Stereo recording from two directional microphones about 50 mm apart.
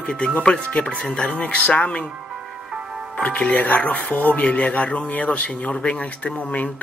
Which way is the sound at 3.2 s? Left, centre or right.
Left.